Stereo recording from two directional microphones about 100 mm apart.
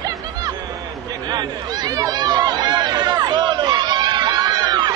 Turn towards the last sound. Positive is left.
turn(degrees=-45)  # may be behind; listen again after turning